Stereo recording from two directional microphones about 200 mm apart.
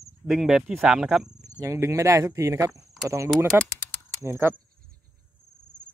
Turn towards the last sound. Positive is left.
turn(degrees=-10)  # may be behind; listen again after turning